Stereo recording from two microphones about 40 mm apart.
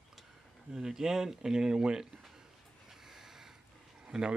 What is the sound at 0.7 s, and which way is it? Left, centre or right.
Speech, centre.